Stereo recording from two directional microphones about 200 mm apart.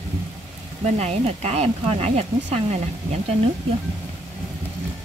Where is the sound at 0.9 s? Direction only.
35° right (ahead or behind).